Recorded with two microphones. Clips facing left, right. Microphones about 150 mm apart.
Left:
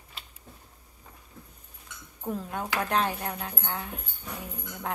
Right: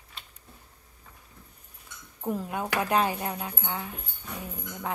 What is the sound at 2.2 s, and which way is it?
Speech, 10° right (ahead or behind).